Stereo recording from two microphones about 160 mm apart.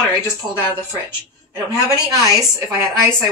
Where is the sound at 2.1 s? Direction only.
20° right (ahead or behind).